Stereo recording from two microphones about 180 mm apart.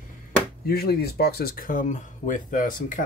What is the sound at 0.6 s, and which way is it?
Speech, 60° left (ahead or behind).